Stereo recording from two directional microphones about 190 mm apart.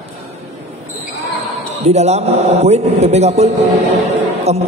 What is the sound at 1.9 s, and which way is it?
A man's voice, 35° right (ahead or behind).